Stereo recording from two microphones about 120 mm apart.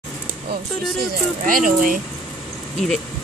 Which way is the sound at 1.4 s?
90° right.